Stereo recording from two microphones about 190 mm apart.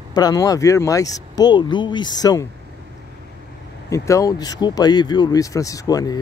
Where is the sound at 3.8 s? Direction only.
15° left (ahead or behind).